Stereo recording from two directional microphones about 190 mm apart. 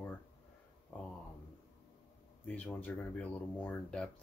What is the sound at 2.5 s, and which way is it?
Speech, 10° left (ahead or behind).